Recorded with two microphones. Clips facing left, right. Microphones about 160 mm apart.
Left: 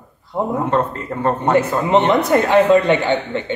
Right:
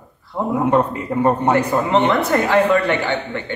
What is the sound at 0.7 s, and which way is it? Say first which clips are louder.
Speech: right 2 dB; 15° right (ahead or behind).